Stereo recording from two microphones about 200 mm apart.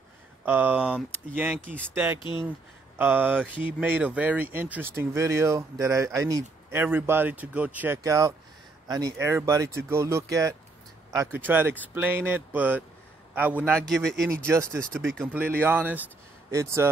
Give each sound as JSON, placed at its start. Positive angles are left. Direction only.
{"t": 0.5, "sound": "speech", "side_deg": -10}
{"t": 2.1, "sound": "speech", "side_deg": 25}
{"t": 3.0, "sound": "a man's voice", "side_deg": -10}
{"t": 14.4, "sound": "speech", "side_deg": -15}
{"t": 15.0, "sound": "a man's voice", "side_deg": 0}
{"t": 15.3, "sound": "speech", "side_deg": -10}